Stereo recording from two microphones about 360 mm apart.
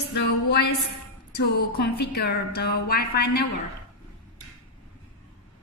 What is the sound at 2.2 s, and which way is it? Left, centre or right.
A woman's voice, left.